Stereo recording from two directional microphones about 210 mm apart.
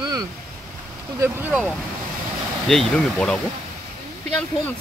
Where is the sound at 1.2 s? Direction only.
10° right (ahead or behind).